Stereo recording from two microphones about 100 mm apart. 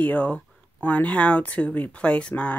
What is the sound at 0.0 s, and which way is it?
A woman's voice, 15° left (ahead or behind).